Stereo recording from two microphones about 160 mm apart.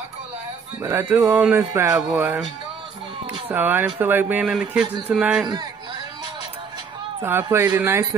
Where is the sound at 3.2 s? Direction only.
10° right (ahead or behind).